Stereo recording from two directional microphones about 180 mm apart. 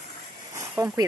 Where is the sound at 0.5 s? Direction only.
15° right (ahead or behind).